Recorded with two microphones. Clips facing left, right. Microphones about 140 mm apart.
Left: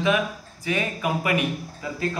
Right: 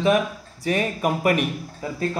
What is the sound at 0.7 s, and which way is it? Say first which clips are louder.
Speech: right 3 dB; 40° right (ahead or behind).